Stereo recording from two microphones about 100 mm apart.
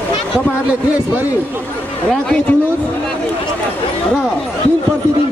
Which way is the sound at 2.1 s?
10° left (ahead or behind).